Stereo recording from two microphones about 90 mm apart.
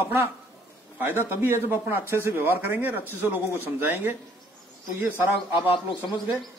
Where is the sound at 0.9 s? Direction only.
25° right (ahead or behind).